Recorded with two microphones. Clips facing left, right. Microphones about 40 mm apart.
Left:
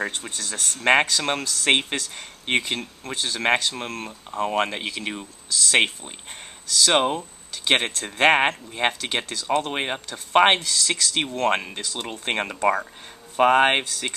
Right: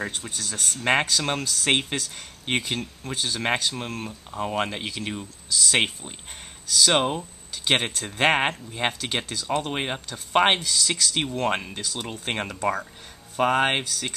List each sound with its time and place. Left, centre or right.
0.0 s speech: centre
0.4 s speech: centre
0.7 s speech: centre
4.5 s speech: centre
10.6 s speech: centre